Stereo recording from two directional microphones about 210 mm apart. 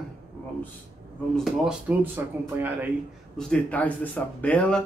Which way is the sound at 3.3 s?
5° left (ahead or behind).